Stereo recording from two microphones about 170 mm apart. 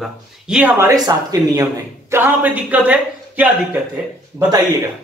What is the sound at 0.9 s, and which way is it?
Speech, 20° right (ahead or behind).